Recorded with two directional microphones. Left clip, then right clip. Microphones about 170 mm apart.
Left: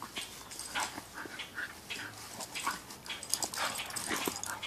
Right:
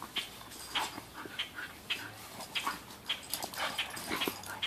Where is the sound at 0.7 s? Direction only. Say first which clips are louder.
Right 1 dB; 15° left (ahead or behind).